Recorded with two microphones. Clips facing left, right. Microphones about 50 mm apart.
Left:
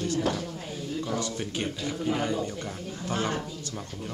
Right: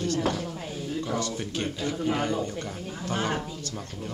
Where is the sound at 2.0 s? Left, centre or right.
Centre.